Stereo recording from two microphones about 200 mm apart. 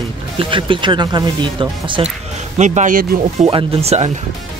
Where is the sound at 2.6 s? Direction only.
35° right (ahead or behind).